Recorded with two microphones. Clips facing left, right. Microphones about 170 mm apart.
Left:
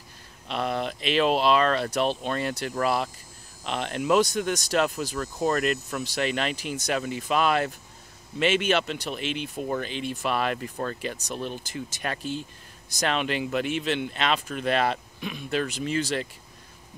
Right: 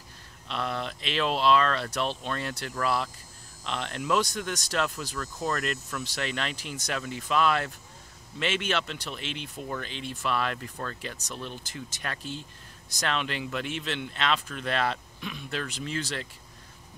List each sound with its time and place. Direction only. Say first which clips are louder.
0.5 s speech: left 4 dB; 15° left (ahead or behind)
6.2 s speech: left 7 dB; 10° left (ahead or behind)